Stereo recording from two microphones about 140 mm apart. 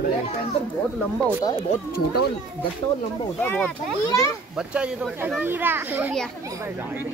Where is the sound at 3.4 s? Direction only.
10° left (ahead or behind).